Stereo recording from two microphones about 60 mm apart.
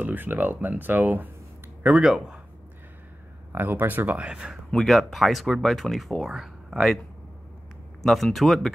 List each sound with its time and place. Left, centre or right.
0.0 s speech: right
1.9 s speech: centre
3.5 s speech: right
4.3 s speech: centre
4.8 s speech: centre
8.0 s speech: centre